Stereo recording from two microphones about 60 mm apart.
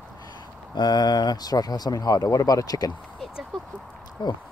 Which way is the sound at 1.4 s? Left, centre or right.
Left.